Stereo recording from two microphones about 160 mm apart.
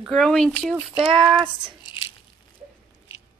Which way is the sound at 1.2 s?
25° right (ahead or behind).